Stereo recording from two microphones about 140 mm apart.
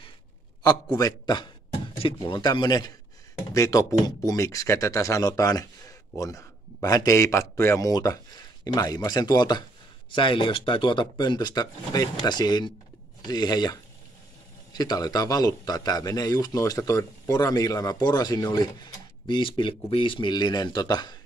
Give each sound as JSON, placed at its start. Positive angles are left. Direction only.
{"t": 0.9, "sound": "speech", "side_deg": 25}